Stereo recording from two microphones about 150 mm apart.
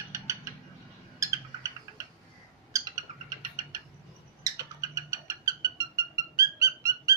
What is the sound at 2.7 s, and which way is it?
Bird, 20° right (ahead or behind).